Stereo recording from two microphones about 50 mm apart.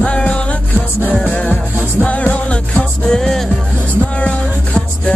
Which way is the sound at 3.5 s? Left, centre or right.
Left.